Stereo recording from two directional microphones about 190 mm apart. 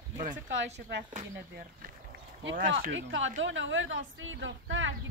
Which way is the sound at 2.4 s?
80° right.